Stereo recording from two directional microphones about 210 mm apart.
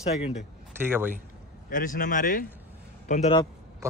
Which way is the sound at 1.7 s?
40° left (ahead or behind).